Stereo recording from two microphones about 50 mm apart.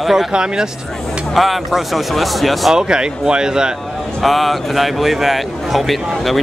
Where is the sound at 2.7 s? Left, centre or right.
Centre.